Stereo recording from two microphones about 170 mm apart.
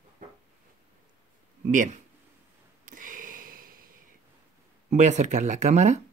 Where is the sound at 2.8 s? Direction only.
50° right (ahead or behind).